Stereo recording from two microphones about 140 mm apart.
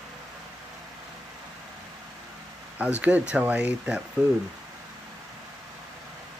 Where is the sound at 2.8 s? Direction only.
10° right (ahead or behind).